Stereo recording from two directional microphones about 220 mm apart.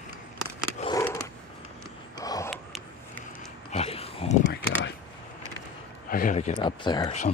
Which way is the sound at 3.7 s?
25° left (ahead or behind).